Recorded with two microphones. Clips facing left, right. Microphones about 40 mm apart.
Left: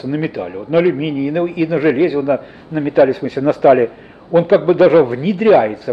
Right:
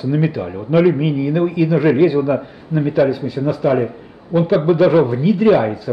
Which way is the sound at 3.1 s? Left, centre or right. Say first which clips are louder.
Left 3 dB; left.